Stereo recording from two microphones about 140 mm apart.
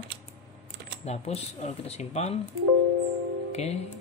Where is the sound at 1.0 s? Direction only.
50° left (ahead or behind).